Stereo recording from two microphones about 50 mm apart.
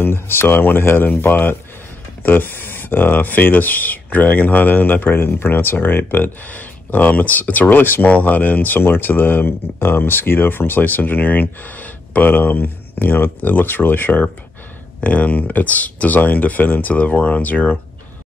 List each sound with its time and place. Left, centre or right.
0.0 s speech: left
15.0 s speech: left
16.9 s speech: left